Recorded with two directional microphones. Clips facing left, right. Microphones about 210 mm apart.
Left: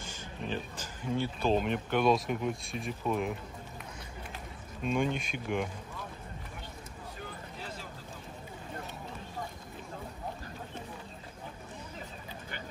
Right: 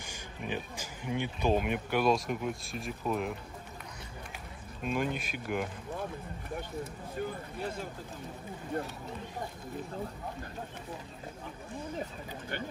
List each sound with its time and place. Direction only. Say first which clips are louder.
0.0 s speech: left 1 dB; 15° right (ahead or behind)
4.8 s speech: left 2 dB; 5° right (ahead or behind)
7.5 s speech: right 6 dB; 55° right (ahead or behind)